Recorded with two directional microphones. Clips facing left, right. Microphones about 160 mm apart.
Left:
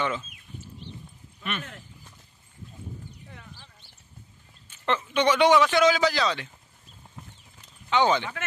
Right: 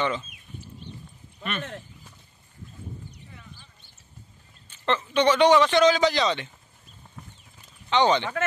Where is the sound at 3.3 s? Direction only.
90° left.